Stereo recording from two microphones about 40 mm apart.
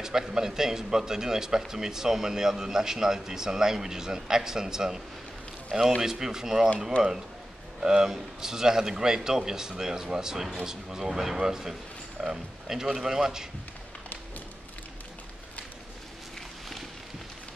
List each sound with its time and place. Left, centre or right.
0.0 s a man's voice: centre